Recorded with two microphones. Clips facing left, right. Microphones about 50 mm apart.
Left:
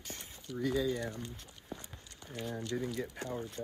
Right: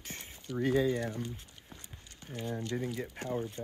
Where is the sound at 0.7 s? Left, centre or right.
Right.